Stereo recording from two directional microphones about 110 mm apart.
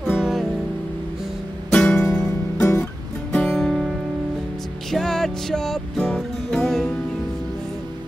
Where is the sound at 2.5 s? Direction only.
25° left (ahead or behind).